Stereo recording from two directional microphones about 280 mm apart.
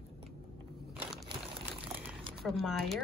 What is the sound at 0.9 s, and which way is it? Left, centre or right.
Crushing, centre.